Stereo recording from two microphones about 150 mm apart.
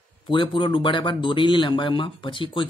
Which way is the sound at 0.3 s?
35° left (ahead or behind).